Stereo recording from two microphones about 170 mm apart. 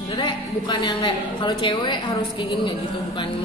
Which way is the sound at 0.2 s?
25° left (ahead or behind).